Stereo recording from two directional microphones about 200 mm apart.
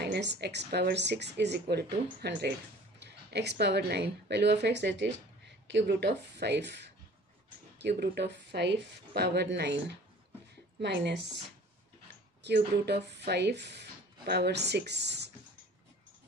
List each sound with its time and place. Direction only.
0.0 s speech: 55° right (ahead or behind)
8.0 s speech: 55° right (ahead or behind)
12.4 s speech: 55° right (ahead or behind)